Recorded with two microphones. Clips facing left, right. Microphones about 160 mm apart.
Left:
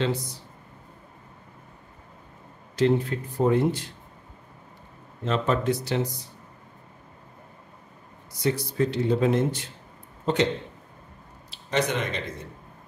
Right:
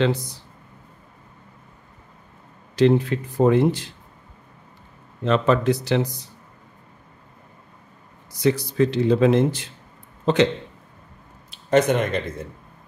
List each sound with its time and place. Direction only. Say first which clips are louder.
2.7 s speech: right 5 dB; 90° right
5.2 s speech: right 6 dB; 90° right
8.4 s speech: right 5 dB; 90° right
10.2 s speech: right 5 dB; 80° right
11.5 s speech: right 8 dB; 50° right (ahead or behind)